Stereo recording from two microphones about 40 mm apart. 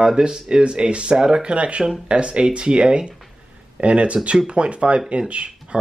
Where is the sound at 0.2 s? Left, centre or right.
Right.